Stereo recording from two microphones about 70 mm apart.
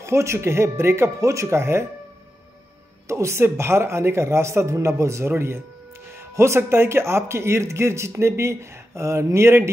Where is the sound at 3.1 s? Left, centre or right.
Right.